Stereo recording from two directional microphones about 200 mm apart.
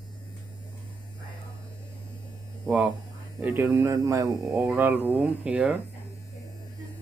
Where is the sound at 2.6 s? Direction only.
5° right (ahead or behind).